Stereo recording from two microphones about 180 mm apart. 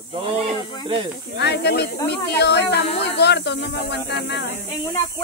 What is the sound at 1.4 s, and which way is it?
Speech, 70° left (ahead or behind).